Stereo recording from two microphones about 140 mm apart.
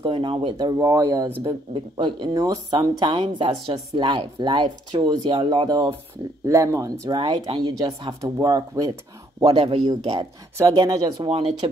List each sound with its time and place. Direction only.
0.0 s speech: 35° right (ahead or behind)
0.6 s speech: 25° right (ahead or behind)
1.4 s speech: 35° right (ahead or behind)
3.1 s speech: 35° right (ahead or behind)
6.4 s speech: 20° right (ahead or behind)
7.2 s speech: 35° right (ahead or behind)
9.5 s speech: 40° right (ahead or behind)
11.2 s speech: 45° right (ahead or behind)